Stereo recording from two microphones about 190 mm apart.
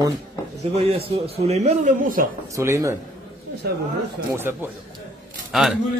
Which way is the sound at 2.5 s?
15° right (ahead or behind).